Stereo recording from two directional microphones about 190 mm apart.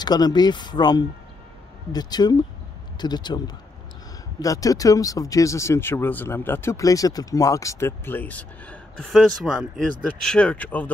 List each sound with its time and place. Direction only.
0.0 s speech: 20° left (ahead or behind)